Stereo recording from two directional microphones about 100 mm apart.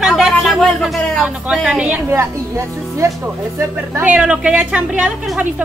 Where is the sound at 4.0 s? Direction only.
15° right (ahead or behind).